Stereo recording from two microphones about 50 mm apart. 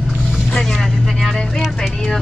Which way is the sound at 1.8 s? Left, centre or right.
Centre.